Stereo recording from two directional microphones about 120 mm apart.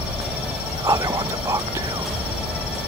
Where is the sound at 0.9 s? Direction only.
30° right (ahead or behind).